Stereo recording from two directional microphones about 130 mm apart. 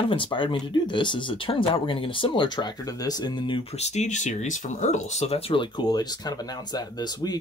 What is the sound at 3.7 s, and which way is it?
Speech, 55° left (ahead or behind).